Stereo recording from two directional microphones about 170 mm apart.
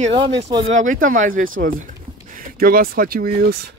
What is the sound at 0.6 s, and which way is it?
Speech, 50° right (ahead or behind).